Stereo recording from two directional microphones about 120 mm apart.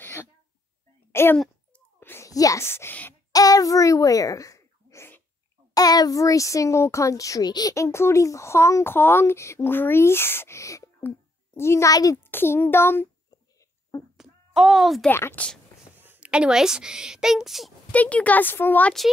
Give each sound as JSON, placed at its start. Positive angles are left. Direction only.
{"t": 0.0, "sound": "throat clearing", "side_deg": 20}
{"t": 1.1, "sound": "a sound", "side_deg": 20}
{"t": 3.3, "sound": "a child's voice", "side_deg": 30}
{"t": 5.8, "sound": "speech", "side_deg": 30}
{"t": 12.2, "sound": "speech", "side_deg": 20}
{"t": 14.1, "sound": "a sound", "side_deg": -5}
{"t": 15.0, "sound": "speech", "side_deg": 20}
{"t": 16.0, "sound": "a woman's voice", "side_deg": -15}
{"t": 17.9, "sound": "speech", "side_deg": 10}